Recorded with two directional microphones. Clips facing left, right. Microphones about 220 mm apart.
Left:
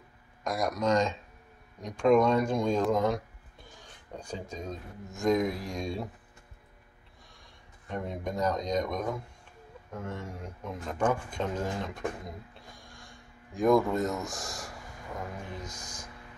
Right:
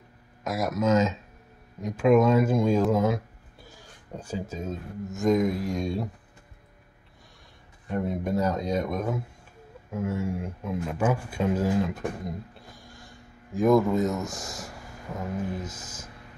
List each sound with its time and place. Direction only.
0.4 s speech: 5° right (ahead or behind)
7.9 s speech: 5° right (ahead or behind)